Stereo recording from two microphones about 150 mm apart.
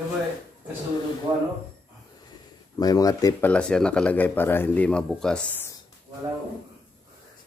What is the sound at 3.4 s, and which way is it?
Speech, 5° left (ahead or behind).